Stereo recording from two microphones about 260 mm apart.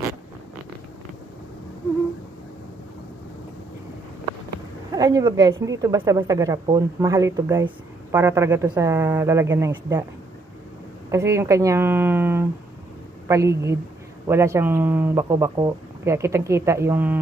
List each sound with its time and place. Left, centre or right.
4.9 s a woman's voice: centre
11.1 s a woman's voice: centre